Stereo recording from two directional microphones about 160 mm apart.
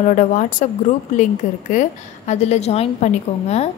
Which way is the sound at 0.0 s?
50° left (ahead or behind).